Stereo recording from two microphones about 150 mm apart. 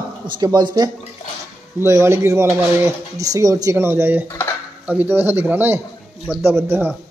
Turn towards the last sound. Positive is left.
turn(degrees=-15)  # may be behind; listen again after turning